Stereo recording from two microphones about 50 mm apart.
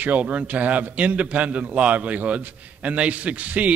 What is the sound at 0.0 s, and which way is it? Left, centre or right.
A man's voice, right.